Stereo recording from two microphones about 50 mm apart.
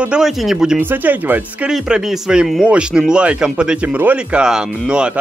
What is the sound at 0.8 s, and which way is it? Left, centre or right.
Speech, right.